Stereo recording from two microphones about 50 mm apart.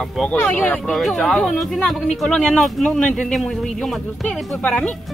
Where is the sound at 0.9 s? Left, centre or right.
Centre.